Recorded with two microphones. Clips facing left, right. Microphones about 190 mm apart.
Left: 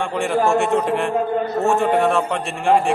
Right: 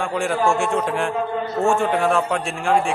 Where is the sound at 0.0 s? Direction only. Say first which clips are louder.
Left 1 dB; centre (ahead or behind).